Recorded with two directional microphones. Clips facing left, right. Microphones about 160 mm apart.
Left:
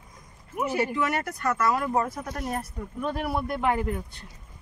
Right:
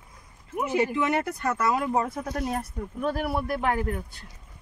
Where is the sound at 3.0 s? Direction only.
Centre (ahead or behind).